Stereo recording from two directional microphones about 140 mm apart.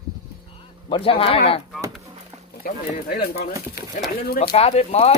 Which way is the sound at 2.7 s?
90° left.